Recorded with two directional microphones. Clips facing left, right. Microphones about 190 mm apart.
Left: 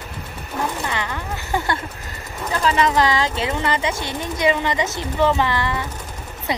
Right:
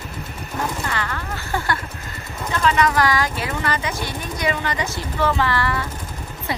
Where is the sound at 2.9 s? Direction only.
20° left (ahead or behind).